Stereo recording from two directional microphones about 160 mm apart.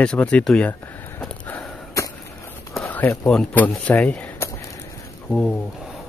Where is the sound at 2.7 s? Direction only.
5° left (ahead or behind).